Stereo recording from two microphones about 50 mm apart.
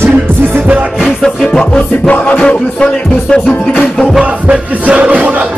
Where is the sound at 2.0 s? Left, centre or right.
Left.